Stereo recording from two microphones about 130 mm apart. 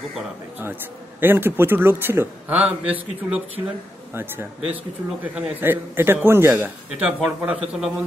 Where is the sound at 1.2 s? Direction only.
15° right (ahead or behind).